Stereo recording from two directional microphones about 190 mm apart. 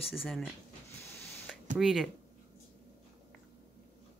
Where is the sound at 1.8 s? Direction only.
Centre (ahead or behind).